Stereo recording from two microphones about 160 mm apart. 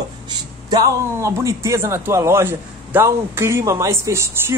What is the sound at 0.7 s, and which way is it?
A man's voice, 20° right (ahead or behind).